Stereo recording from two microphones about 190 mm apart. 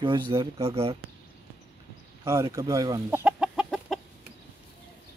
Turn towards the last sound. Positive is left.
turn(degrees=0)  # may be behind; listen again after turning